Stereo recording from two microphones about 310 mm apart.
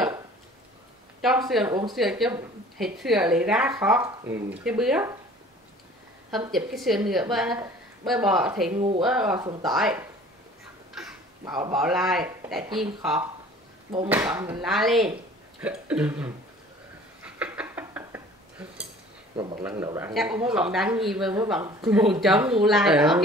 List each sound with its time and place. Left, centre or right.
1.2 s speech: centre
1.7 s speech: centre
2.0 s speech: centre
6.5 s speech: centre
8.7 s speech: centre
9.0 s speech: centre
9.7 s speech: centre
10.9 s a sound: centre
11.4 s speech: centre
11.9 s speech: centre
12.6 s speech: centre
13.0 s speech: centre
17.2 s dishes: centre
19.3 s speech: centre